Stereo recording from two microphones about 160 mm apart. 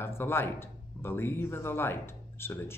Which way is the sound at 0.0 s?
15° left (ahead or behind).